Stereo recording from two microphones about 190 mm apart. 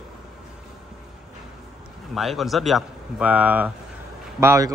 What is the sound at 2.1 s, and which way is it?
A man's voice, centre (ahead or behind).